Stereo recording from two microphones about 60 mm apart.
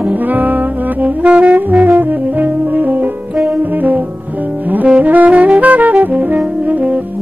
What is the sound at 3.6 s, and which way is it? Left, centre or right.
Brass instrument, right.